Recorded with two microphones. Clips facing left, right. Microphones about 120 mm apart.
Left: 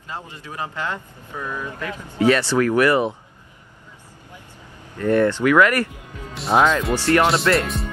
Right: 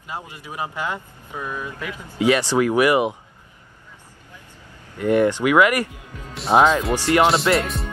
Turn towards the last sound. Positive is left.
turn(degrees=0)  # may be behind; listen again after turning